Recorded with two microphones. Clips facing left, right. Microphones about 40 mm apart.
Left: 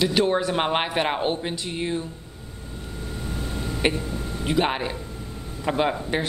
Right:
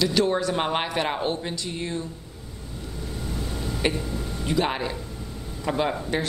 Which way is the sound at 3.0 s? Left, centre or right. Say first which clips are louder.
Left 1 dB; left.